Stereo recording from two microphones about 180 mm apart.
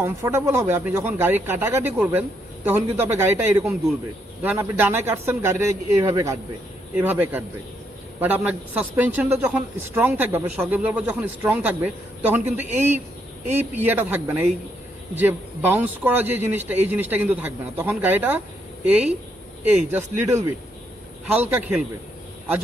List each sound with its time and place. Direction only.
0.0 s a man's voice: 15° right (ahead or behind)